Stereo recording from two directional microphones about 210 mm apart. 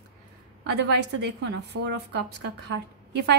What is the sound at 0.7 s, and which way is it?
Speech, 55° right (ahead or behind).